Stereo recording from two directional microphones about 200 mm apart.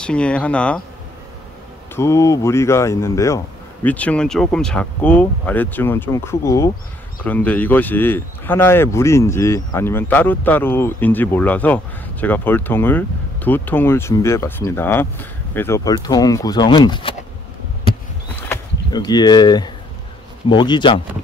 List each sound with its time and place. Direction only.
0.0 s speech: 5° left (ahead or behind)
2.0 s speech: 15° left (ahead or behind)
18.5 s speech: 20° left (ahead or behind)